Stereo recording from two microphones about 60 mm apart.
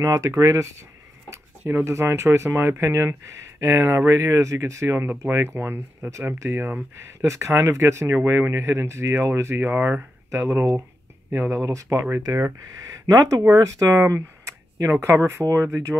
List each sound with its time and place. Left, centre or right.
0.0 s speech: right
1.7 s speech: right
6.6 s speech: right
7.2 s speech: right
11.6 s speech: right
12.8 s speech: right
13.5 s speech: right